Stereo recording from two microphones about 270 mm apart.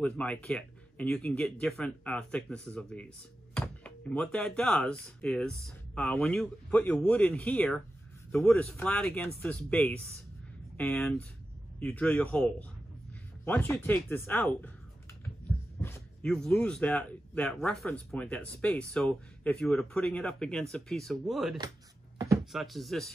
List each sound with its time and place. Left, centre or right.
0.0 s speech: centre
15.8 s speech: centre
22.2 s a sound: centre
22.5 s speech: centre